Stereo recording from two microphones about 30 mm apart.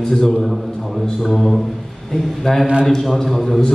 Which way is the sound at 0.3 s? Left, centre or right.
Centre.